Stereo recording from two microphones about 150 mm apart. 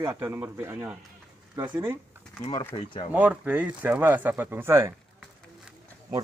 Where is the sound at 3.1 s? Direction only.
10° right (ahead or behind).